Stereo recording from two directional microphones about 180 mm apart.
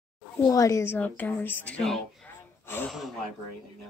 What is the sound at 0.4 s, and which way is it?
A woman's voice, 20° left (ahead or behind).